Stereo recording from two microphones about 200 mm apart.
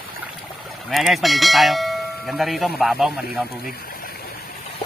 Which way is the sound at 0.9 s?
Centre (ahead or behind).